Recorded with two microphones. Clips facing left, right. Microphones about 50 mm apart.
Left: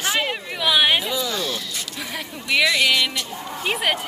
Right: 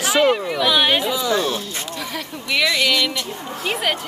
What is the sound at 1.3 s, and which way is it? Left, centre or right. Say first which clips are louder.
Speech: right 6 dB; right.